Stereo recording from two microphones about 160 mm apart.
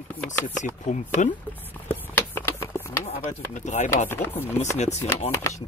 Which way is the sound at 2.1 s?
15° left (ahead or behind).